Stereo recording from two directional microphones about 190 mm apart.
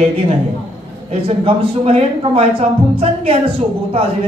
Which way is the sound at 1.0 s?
30° right (ahead or behind).